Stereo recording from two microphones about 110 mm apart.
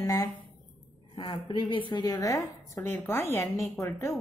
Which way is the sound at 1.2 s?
45° left (ahead or behind).